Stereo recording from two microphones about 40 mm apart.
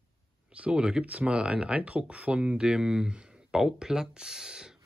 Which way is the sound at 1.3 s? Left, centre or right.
Right.